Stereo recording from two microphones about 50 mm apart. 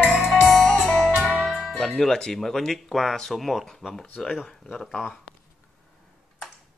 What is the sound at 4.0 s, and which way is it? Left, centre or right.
Speech, centre.